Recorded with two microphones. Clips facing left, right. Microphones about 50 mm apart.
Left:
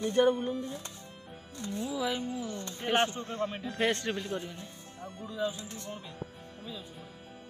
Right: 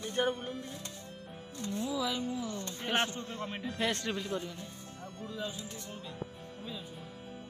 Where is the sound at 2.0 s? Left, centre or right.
Left.